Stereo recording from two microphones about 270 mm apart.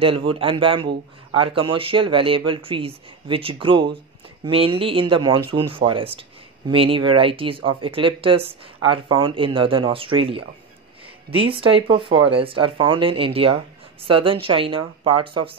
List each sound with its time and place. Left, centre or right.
0.0 s speech: centre